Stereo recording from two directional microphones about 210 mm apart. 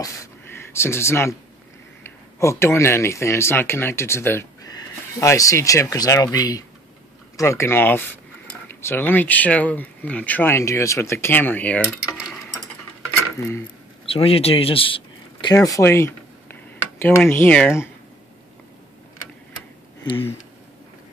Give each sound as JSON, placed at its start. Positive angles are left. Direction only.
{"t": 0.0, "sound": "a sound", "side_deg": 15}
{"t": 2.0, "sound": "speech", "side_deg": 10}
{"t": 13.4, "sound": "speech", "side_deg": 10}
{"t": 14.0, "sound": "speech", "side_deg": 25}
{"t": 20.0, "sound": "speech", "side_deg": 20}